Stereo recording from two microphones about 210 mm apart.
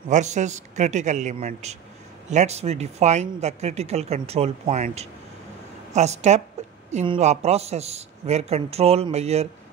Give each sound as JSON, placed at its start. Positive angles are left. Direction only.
{"t": 0.1, "sound": "speech", "side_deg": -35}